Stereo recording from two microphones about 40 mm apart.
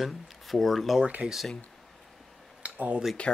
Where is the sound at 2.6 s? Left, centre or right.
Right.